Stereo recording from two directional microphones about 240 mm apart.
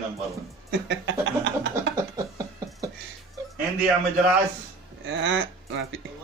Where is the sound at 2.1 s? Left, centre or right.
Centre.